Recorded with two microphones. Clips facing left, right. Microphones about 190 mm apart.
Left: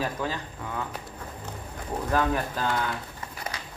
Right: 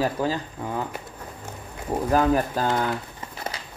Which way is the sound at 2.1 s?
40° right (ahead or behind).